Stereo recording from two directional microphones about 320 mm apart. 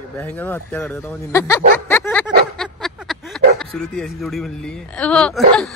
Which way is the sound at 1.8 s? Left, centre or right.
Centre.